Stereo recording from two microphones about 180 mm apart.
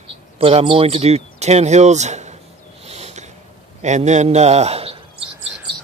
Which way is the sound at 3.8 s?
40° right (ahead or behind).